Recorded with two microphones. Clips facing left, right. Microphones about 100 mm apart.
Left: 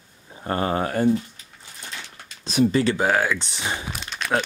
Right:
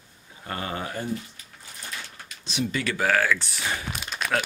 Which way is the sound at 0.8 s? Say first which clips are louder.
Left 10 dB; 55° left (ahead or behind).